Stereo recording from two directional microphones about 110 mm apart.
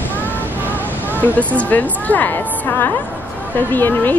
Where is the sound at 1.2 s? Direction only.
10° left (ahead or behind).